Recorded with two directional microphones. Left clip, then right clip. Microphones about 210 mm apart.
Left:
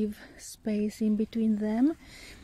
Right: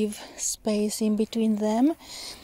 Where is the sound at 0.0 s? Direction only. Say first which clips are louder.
Right 6 dB; 20° right (ahead or behind).